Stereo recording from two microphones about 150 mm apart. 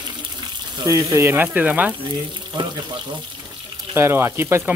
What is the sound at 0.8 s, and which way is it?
Speech, 20° right (ahead or behind).